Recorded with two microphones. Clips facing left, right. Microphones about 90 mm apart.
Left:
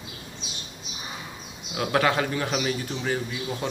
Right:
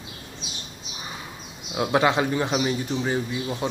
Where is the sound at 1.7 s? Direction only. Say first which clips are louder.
Right 2 dB; 20° right (ahead or behind).